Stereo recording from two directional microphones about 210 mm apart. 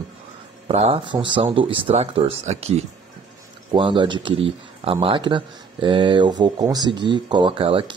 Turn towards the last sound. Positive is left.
turn(degrees=-25)  # may be behind; listen again after turning